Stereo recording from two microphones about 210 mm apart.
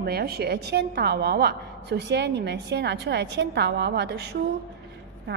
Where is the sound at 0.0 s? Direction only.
50° right (ahead or behind).